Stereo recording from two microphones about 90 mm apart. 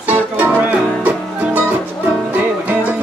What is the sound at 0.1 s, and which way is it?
Music, 15° right (ahead or behind).